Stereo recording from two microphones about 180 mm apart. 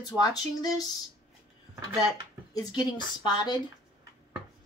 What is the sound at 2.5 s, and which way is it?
Speech, 20° left (ahead or behind).